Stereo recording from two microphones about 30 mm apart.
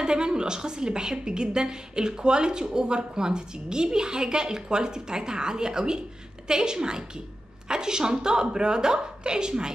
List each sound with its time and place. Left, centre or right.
0.0 s a woman's voice: right